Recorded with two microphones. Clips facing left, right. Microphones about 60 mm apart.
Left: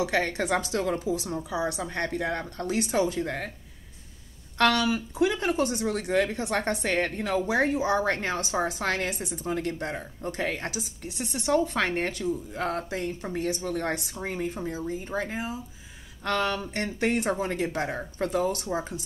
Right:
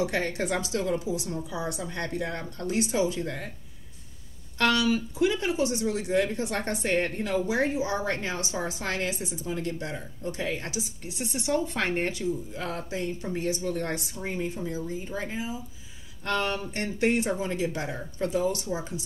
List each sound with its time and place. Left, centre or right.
0.0 s speech: left
4.6 s a woman's voice: left
12.5 s speech: left
15.0 s speech: left